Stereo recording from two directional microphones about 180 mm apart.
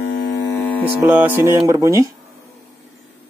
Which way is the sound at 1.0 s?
10° right (ahead or behind).